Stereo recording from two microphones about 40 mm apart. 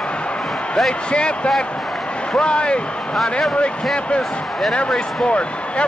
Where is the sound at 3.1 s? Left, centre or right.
Centre.